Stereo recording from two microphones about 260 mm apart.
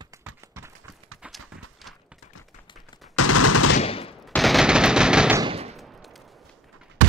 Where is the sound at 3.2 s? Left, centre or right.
Left.